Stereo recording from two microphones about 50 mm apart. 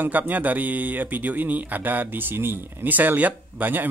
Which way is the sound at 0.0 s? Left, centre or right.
Right.